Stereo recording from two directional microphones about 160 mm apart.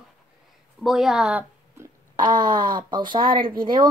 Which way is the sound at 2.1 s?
25° right (ahead or behind).